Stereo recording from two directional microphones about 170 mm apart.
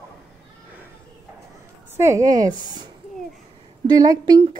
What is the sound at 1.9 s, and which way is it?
Speech, 15° right (ahead or behind).